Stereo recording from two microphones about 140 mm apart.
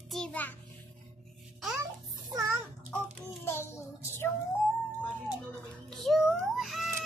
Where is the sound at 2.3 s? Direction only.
25° right (ahead or behind).